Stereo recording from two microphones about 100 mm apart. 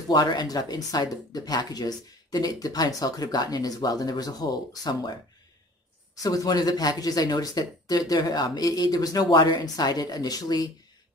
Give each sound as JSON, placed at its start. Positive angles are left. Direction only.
{"t": 0.1, "sound": "speech", "side_deg": 45}
{"t": 6.2, "sound": "speech", "side_deg": 35}